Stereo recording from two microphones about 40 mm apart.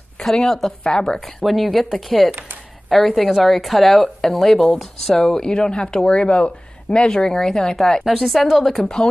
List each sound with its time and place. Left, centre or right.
0.2 s a woman's voice: centre
0.8 s speech: left
1.2 s a woman's voice: centre
8.0 s a woman's voice: centre